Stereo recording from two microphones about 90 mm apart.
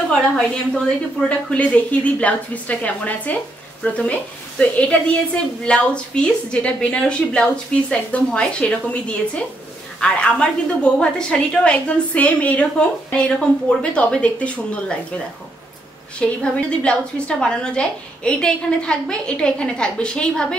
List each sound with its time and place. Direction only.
0.1 s a woman's voice: 10° left (ahead or behind)
16.2 s a woman's voice: 15° left (ahead or behind)